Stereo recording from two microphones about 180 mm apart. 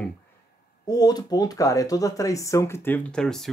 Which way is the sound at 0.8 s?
20° left (ahead or behind).